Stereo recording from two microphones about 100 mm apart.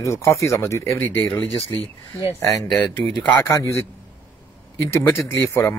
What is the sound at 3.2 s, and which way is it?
Speech, 25° left (ahead or behind).